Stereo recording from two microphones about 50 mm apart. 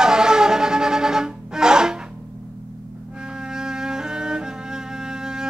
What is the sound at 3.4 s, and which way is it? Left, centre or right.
Music, centre.